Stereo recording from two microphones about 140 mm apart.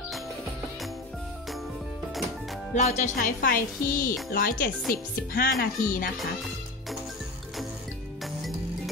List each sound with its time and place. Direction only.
2.7 s speech: 60° left (ahead or behind); by 6.1 s 80° left
6.1 s music: centre (ahead or behind)
8.4 s music: centre (ahead or behind)